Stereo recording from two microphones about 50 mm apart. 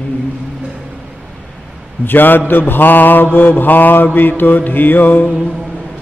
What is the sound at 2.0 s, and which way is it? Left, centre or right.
Mantra, left.